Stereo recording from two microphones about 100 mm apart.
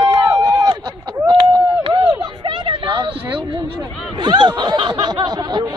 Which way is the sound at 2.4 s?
50° right (ahead or behind).